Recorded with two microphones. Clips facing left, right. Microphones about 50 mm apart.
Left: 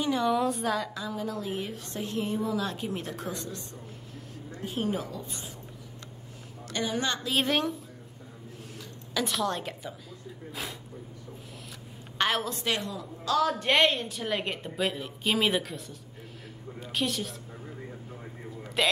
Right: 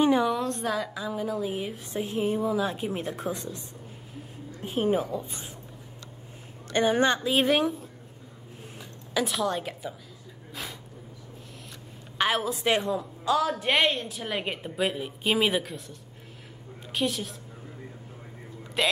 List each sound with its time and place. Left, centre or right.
0.2 s a woman's voice: centre
4.6 s speech: right
6.7 s a woman's voice: right
7.2 s a woman's voice: centre
9.2 s a woman's voice: centre
12.2 s a woman's voice: centre
12.6 s speech: right
13.4 s a woman's voice: centre
18.8 s a woman's voice: centre